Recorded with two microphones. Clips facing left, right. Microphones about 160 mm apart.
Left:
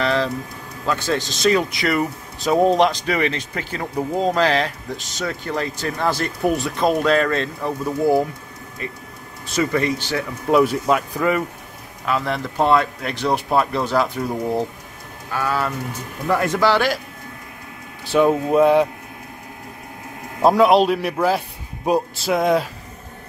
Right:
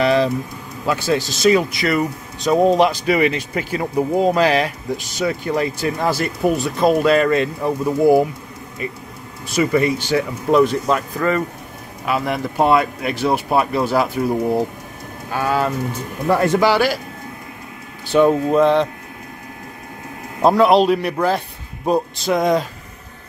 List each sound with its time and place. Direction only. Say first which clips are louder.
0.0 s speech: right 5 dB; 15° right (ahead or behind)
9.6 s speech: right 3 dB; 10° right (ahead or behind)
10.5 s speech: right 1 dB; 5° left (ahead or behind)
12.1 s speech: right 2 dB; 10° right (ahead or behind)
15.3 s speech: right 3 dB; 25° right (ahead or behind)
16.5 s speech: right 2 dB; 10° right (ahead or behind)
18.0 s speech: right 2 dB; centre (ahead or behind)
20.4 s a man's voice: right 1 dB; 5° left (ahead or behind)